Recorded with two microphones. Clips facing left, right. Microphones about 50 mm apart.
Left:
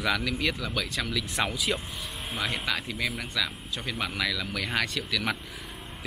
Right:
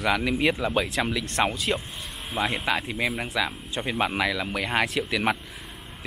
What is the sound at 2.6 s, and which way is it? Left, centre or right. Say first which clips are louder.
Speech: right 4 dB; right.